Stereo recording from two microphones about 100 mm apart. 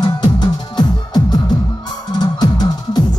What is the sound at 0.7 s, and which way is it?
Music, 45° left (ahead or behind).